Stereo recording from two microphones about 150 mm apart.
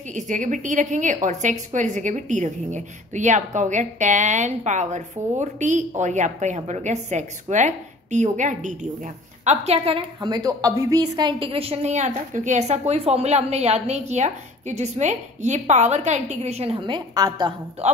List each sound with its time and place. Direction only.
0.1 s a woman's voice: 55° right (ahead or behind); by 17.6 s 25° right (ahead or behind)